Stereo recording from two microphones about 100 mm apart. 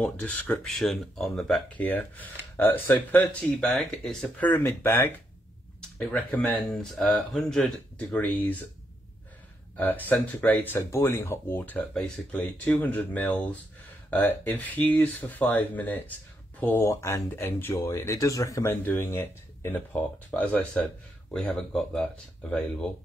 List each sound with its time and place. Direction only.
0.0 s speech: 15° left (ahead or behind)
0.7 s speech: 5° left (ahead or behind)
1.8 s speech: 15° left (ahead or behind)
4.4 s speech: 20° left (ahead or behind)
5.8 s speech: 10° left (ahead or behind)
8.0 s speech: 15° left (ahead or behind)
9.8 s speech: 20° left (ahead or behind)
16.8 s speech: 25° left (ahead or behind)
18.7 s speech: 20° left (ahead or behind)